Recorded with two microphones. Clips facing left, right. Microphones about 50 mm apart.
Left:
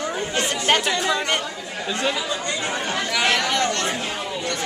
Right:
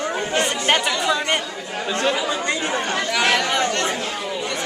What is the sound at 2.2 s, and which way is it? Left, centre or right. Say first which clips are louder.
Speech: right 3 dB; right.